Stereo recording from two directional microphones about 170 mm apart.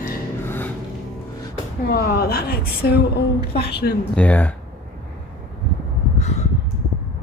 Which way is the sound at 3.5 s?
70° left (ahead or behind).